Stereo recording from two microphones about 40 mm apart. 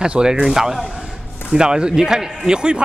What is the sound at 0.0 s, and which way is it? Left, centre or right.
A man's voice, centre.